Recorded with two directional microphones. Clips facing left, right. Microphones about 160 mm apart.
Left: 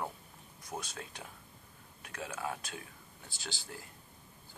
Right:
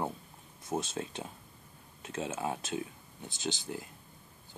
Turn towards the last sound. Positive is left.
turn(degrees=-20)  # may be behind; listen again after turning